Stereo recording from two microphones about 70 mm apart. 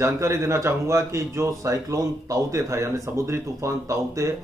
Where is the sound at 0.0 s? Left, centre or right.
Right.